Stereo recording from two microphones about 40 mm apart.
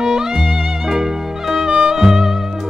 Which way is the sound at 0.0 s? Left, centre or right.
Centre.